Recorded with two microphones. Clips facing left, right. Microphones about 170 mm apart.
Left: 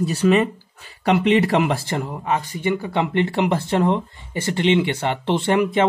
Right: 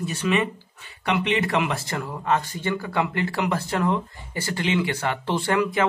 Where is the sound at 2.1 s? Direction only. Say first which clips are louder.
Left 1 dB; 15° left (ahead or behind).